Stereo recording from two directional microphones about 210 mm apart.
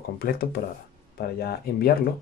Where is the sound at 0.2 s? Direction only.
45° left (ahead or behind).